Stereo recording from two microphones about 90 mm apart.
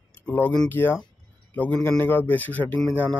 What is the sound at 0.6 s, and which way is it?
Speech, 25° left (ahead or behind).